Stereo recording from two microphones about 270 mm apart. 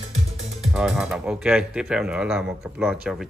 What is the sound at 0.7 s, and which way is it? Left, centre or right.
Speech, centre.